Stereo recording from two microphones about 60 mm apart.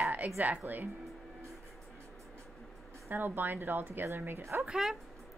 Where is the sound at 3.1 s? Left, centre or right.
Right.